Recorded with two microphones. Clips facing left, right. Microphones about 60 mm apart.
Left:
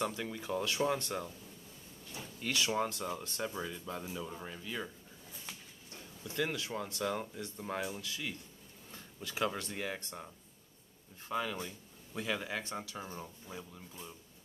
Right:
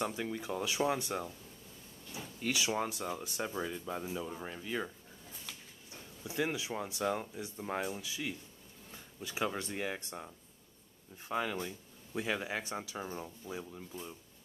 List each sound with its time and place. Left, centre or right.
0.0 s speech: centre
2.5 s speech: centre
6.2 s speech: centre
8.9 s a sound: centre
9.6 s speech: centre
11.2 s speech: centre